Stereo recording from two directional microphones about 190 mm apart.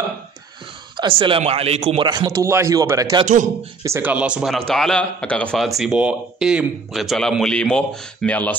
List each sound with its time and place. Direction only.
0.9 s speech: 25° right (ahead or behind)
2.0 s speech: 20° right (ahead or behind); by 8.5 s 5° left (ahead or behind)